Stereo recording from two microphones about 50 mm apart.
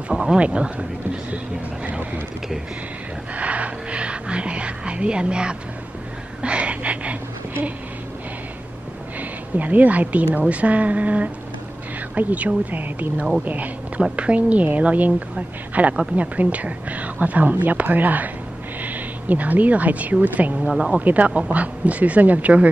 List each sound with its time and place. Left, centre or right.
0.1 s a woman's voice: centre
3.3 s music: right
6.4 s a sound: right
9.6 s a woman's voice: right
20.7 s speech: centre
21.0 s a woman's voice: right